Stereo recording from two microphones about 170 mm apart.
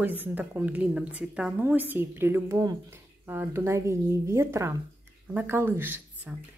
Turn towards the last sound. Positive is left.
turn(degrees=-10)  # may be behind; listen again after turning